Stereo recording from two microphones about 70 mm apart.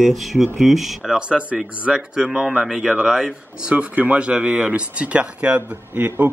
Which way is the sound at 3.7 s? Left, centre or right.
Centre.